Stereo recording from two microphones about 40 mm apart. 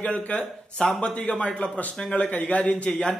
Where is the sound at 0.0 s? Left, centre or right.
Left.